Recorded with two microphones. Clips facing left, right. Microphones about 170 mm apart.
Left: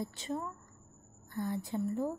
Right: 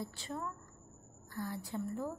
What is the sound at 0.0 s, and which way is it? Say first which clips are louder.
A woman's voice: left 4 dB; 20° left (ahead or behind).